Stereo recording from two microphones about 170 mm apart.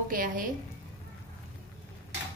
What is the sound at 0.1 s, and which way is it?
Speech, 55° right (ahead or behind).